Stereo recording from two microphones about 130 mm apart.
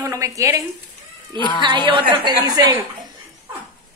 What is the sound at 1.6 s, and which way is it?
Speech, 40° right (ahead or behind).